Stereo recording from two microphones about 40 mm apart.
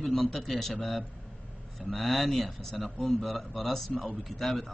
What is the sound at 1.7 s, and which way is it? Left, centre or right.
Speech, centre.